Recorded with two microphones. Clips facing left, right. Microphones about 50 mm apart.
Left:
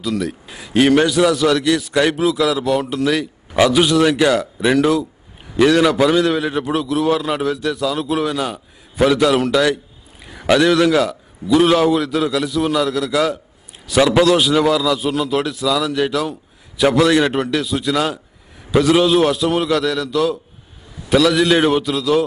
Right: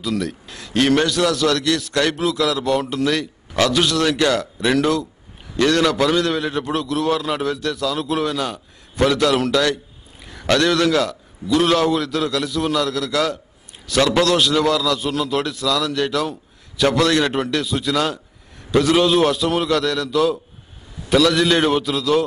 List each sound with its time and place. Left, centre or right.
0.0 s a man's voice: centre